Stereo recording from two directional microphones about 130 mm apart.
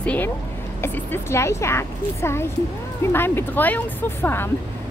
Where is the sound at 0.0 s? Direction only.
10° left (ahead or behind).